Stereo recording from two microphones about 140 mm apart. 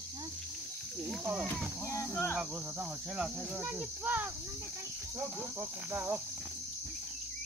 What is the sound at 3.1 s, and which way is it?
Cricket, 5° right (ahead or behind).